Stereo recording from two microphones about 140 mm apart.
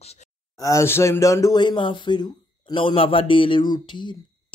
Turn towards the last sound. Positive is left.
turn(degrees=35)  # may be behind; listen again after turning